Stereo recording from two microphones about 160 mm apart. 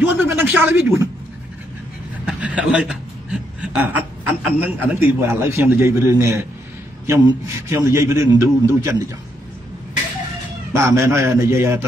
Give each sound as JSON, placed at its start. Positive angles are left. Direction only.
{"t": 0.0, "sound": "a man's voice", "side_deg": -15}
{"t": 2.2, "sound": "a man's voice", "side_deg": -5}
{"t": 10.7, "sound": "a man's voice", "side_deg": -15}